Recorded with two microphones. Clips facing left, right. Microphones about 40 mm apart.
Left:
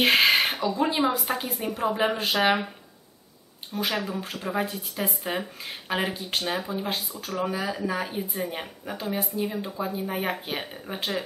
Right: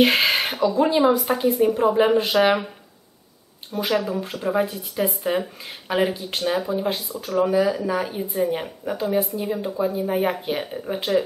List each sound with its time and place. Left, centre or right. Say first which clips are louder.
0.0 s speech: right 2 dB; centre
3.8 s speech: right 6 dB; centre